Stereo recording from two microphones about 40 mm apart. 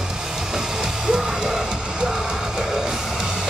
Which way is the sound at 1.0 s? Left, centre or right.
Centre.